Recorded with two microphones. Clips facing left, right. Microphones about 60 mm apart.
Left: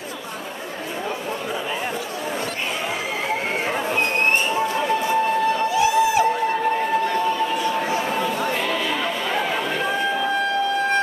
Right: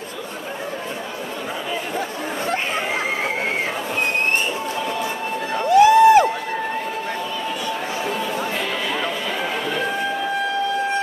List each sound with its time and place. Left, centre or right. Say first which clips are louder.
5.7 s crowd: right 12 dB; right